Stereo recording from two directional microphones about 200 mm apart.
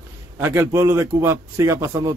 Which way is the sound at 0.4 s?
10° right (ahead or behind).